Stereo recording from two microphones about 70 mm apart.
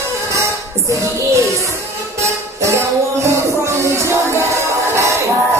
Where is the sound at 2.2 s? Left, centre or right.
Right.